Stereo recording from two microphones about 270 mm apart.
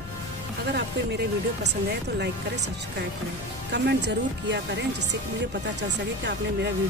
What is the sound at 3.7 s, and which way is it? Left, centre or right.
Speech, right.